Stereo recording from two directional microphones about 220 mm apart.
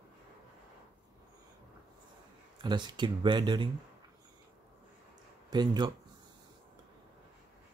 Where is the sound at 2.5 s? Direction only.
20° right (ahead or behind).